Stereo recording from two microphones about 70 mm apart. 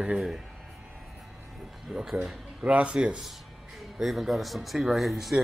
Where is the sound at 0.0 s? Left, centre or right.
Centre.